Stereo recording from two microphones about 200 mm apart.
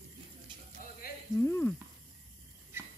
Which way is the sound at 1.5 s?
10° left (ahead or behind).